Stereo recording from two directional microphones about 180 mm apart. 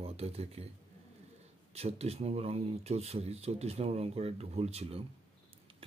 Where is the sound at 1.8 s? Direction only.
35° right (ahead or behind).